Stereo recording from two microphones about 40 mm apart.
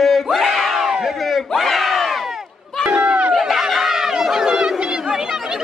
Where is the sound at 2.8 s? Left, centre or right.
Centre.